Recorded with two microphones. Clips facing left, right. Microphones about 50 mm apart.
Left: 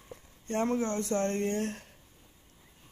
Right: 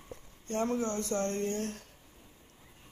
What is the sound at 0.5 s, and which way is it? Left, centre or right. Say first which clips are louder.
Speech: left 2 dB; centre.